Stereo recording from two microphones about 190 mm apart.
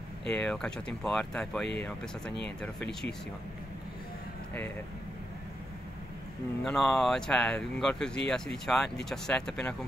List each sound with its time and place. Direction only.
0.3 s speech: 5° left (ahead or behind)
6.6 s speech: centre (ahead or behind)